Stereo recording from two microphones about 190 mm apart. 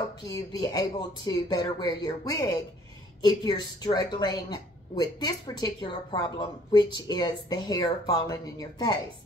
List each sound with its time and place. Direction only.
0.3 s a woman's voice: 20° left (ahead or behind)